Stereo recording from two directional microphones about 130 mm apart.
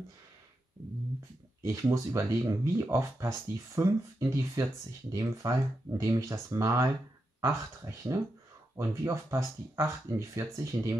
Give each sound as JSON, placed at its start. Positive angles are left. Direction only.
{"t": 1.6, "sound": "speech", "side_deg": -20}